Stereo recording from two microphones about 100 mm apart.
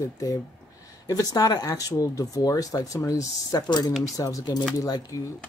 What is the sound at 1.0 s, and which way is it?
Speech, 35° left (ahead or behind).